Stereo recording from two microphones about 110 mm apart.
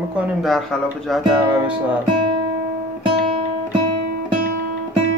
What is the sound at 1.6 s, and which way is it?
Speech, 10° right (ahead or behind).